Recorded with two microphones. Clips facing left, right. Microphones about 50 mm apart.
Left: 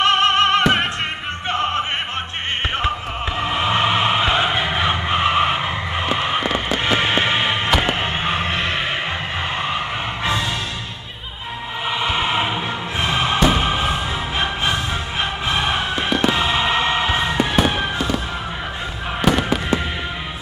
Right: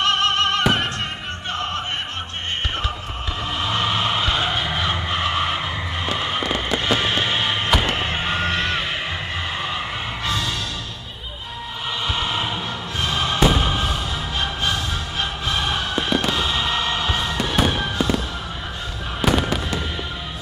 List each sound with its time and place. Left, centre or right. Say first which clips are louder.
0.0 s music: left 4 dB; left
1.5 s opera: left 5 dB; left
3.3 s music: left 4 dB; left
5.9 s a sound: left 4 dB; left
6.8 s music: left 4 dB; left
12.0 s music: left 4 dB; left
16.2 s fireworks: left 4 dB; left
19.2 s fireworks: left 2 dB; centre